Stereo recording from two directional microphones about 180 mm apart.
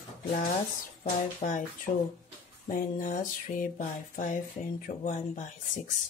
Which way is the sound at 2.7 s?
45° left (ahead or behind).